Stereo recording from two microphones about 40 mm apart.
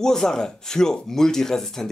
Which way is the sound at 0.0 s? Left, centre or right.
Centre.